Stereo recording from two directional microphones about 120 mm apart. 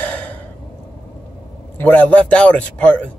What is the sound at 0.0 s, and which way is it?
Gasp, 15° left (ahead or behind).